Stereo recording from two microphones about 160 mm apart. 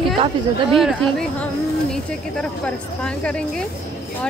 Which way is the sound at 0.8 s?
Centre (ahead or behind).